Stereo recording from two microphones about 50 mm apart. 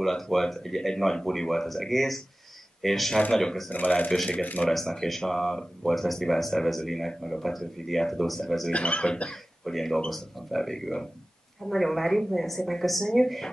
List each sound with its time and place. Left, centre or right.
0.0 s speech: centre
3.7 s speech: left
4.6 s speech: centre
8.7 s speech: left
9.7 s speech: centre